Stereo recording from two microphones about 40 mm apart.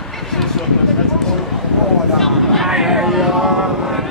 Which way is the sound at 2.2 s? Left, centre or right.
Centre.